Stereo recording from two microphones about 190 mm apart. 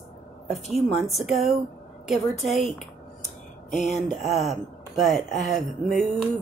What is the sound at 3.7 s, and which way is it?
Speech, 40° left (ahead or behind).